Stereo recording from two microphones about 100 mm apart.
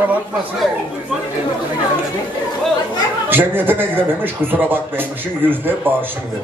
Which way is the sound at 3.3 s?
20° right (ahead or behind).